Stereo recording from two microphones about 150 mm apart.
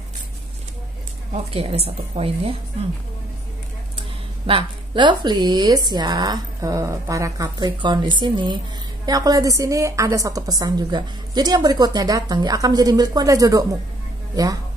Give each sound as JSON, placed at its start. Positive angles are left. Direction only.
{"t": 1.3, "sound": "a woman's voice", "side_deg": -40}
{"t": 4.5, "sound": "a woman's voice", "side_deg": -35}